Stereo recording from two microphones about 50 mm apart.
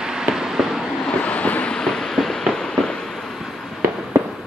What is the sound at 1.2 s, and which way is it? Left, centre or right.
Waves, left.